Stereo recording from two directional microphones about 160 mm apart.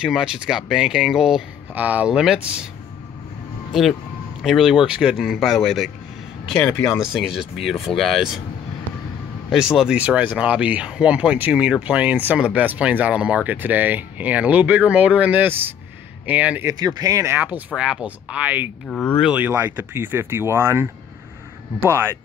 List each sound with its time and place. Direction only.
0.0 s speech: 5° right (ahead or behind)
4.4 s speech: centre (ahead or behind)
6.6 s speech: 15° left (ahead or behind)
7.1 s speech: 5° right (ahead or behind)
9.8 s speech: 5° right (ahead or behind)
16.8 s speech: 25° right (ahead or behind)
18.9 s speech: 10° left (ahead or behind)
19.2 s speech: 10° right (ahead or behind)